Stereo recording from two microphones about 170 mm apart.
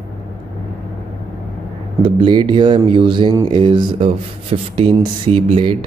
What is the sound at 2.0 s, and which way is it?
A man's voice, 30° right (ahead or behind).